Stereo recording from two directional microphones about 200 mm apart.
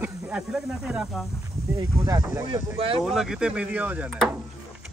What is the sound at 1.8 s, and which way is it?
Speech, 15° right (ahead or behind).